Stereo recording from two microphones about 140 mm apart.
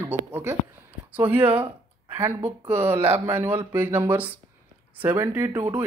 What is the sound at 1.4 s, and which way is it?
Speech, 40° right (ahead or behind).